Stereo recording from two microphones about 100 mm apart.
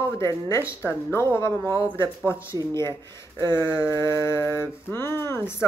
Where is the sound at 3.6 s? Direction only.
30° left (ahead or behind).